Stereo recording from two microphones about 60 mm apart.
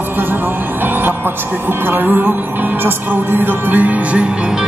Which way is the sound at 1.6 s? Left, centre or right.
Right.